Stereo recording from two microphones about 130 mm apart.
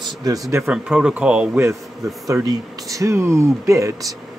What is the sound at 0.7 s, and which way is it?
Speech, 5° right (ahead or behind).